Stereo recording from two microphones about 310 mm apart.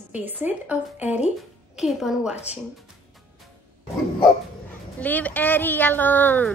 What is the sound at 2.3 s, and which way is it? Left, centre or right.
Speech, left.